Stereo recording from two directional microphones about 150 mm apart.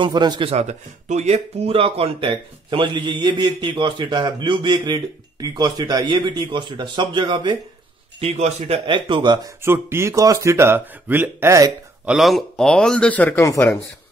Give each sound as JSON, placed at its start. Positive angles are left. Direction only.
{"t": 0.0, "sound": "speech", "side_deg": -30}
{"t": 8.2, "sound": "a man's voice", "side_deg": -45}
{"t": 8.8, "sound": "speech", "side_deg": -35}
{"t": 9.6, "sound": "speech", "side_deg": -15}
{"t": 12.1, "sound": "a man's voice", "side_deg": 0}